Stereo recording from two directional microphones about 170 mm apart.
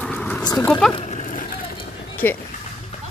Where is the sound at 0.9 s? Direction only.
40° left (ahead or behind).